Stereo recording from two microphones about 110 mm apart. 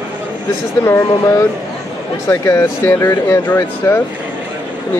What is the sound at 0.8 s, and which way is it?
Speech, 25° left (ahead or behind).